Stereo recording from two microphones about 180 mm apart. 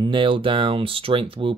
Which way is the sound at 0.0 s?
25° right (ahead or behind).